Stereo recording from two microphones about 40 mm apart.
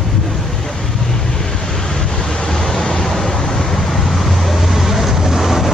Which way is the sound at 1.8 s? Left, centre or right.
Centre.